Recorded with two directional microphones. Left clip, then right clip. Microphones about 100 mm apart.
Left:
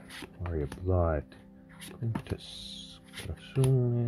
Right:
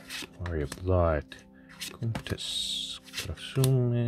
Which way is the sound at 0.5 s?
35° right (ahead or behind).